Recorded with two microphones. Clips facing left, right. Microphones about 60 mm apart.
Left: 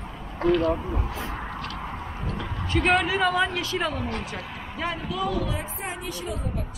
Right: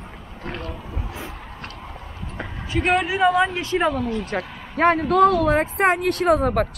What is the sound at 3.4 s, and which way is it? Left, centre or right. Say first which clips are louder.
Speech: right 5 dB; right.